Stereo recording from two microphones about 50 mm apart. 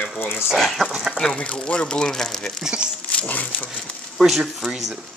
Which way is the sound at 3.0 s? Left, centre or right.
Left.